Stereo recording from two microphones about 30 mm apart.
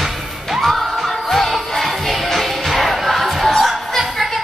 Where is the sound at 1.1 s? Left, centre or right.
Centre.